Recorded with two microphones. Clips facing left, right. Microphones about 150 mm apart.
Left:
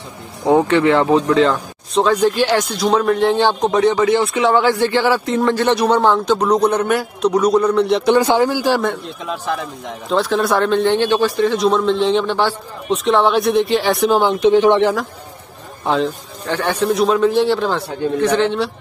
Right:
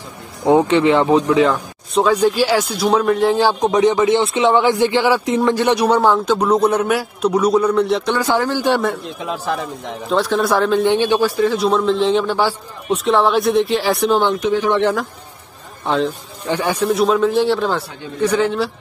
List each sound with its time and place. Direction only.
0.5 s speech: 15° right (ahead or behind); by 8.1 s centre (ahead or behind)
8.1 s speech: 20° left (ahead or behind)
8.6 s a man's voice: centre (ahead or behind)
10.8 s a man's voice: 15° right (ahead or behind)
14.4 s speech: 25° left (ahead or behind)
14.8 s a man's voice: 5° left (ahead or behind)
16.4 s a man's voice: 10° right (ahead or behind)